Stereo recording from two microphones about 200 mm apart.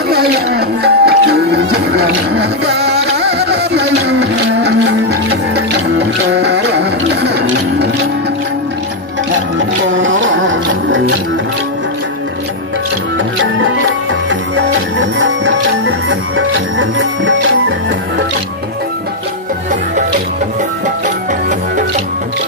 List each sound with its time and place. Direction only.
0.1 s music: 50° right (ahead or behind)
9.8 s music: 70° right (ahead or behind)
13.4 s music: 70° right (ahead or behind)
21.5 s music: 40° right (ahead or behind)